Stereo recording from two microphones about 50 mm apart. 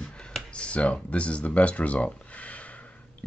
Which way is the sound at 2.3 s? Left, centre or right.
Left.